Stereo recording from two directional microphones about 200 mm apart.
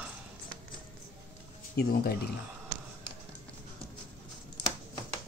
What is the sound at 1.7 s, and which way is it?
Speech, 50° left (ahead or behind).